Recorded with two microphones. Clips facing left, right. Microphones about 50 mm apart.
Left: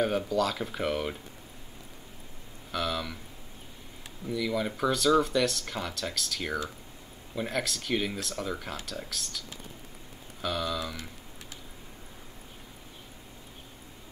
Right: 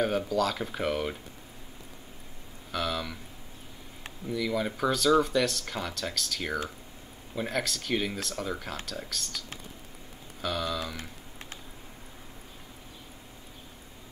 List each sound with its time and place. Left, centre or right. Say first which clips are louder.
0.0 s speech: even; centre
2.7 s speech: even; centre
4.3 s speech: even; centre
10.4 s speech: even; centre